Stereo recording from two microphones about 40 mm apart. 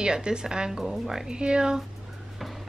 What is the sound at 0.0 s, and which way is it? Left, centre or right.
A woman's voice, right.